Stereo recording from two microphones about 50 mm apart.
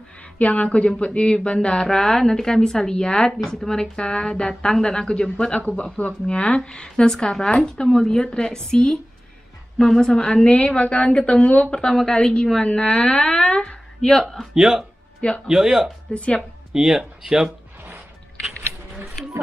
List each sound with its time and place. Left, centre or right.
0.4 s speech: left; by 13.6 s centre
14.5 s speech: centre
16.1 s speech: left
16.7 s speech: centre